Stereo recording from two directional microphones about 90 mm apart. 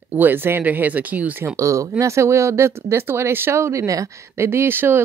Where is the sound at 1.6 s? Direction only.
35° right (ahead or behind).